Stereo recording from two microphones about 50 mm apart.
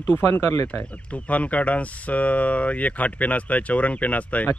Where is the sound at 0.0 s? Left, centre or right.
Left.